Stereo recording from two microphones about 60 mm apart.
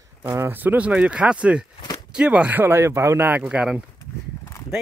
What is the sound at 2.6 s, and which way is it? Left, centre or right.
Speech, right.